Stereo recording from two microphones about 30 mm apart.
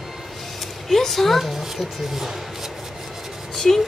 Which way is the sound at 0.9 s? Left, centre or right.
Centre.